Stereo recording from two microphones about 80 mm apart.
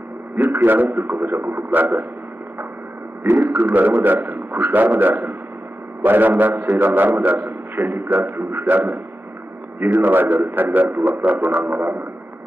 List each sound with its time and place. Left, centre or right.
0.4 s a man's voice: right
3.3 s a man's voice: right